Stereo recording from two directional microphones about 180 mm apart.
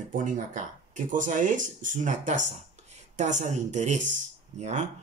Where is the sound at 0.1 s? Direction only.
45° right (ahead or behind).